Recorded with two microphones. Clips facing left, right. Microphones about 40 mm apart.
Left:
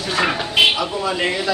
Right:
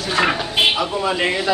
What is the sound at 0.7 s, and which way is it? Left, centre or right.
Speech, right.